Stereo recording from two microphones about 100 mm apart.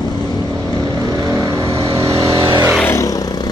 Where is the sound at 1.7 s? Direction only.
70° right (ahead or behind).